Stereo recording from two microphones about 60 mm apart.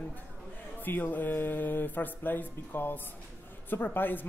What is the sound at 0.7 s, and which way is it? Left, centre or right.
A woman's voice, left.